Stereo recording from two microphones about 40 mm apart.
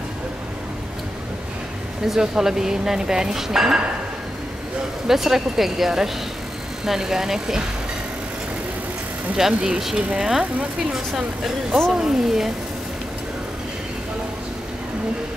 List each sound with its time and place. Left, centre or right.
2.0 s speech: centre
5.0 s speech: centre
9.5 s speech: right
10.1 s speech: centre